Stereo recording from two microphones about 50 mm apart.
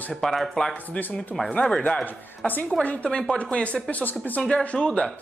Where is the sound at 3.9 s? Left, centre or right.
Left.